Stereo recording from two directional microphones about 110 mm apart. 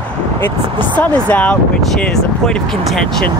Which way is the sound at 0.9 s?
15° left (ahead or behind).